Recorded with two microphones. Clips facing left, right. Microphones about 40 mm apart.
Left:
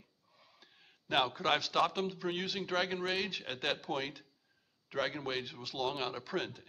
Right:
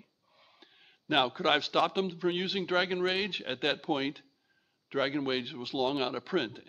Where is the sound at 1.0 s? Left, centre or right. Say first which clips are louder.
Right 4 dB; right.